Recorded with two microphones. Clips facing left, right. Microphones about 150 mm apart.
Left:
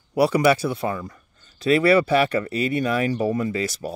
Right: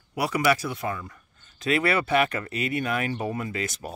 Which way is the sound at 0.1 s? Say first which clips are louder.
Left 6 dB; 30° left (ahead or behind).